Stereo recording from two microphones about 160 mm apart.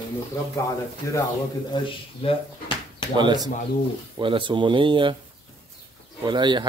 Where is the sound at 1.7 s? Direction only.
25° left (ahead or behind).